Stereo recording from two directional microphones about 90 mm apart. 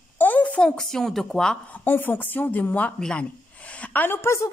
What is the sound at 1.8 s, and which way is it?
A woman's voice, 20° left (ahead or behind).